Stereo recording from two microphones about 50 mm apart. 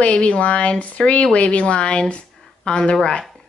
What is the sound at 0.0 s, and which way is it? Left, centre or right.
Speech, left.